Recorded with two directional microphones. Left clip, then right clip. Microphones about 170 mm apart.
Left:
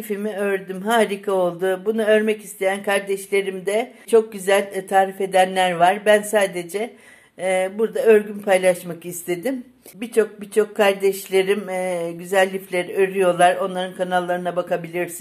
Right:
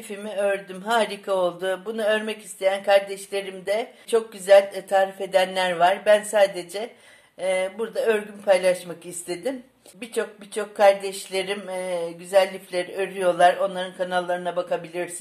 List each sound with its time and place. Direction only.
0.2 s speech: 25° left (ahead or behind)